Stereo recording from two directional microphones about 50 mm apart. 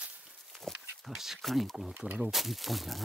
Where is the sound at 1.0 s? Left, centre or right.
Centre.